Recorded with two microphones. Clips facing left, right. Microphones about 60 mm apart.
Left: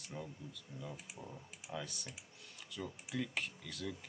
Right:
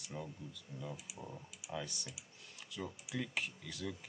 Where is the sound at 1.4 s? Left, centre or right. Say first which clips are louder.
Even; left.